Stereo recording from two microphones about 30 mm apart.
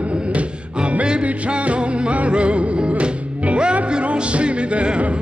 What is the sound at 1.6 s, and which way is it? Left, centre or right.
Music, right.